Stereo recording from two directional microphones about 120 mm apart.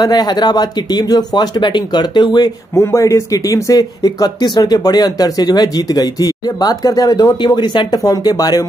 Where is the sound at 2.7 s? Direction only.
25° left (ahead or behind).